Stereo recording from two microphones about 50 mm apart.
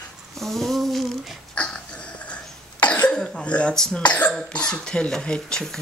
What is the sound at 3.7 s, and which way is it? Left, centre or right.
Speech, centre.